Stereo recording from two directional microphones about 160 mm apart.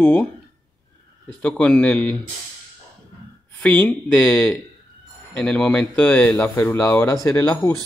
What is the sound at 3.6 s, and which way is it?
Speech, 10° left (ahead or behind).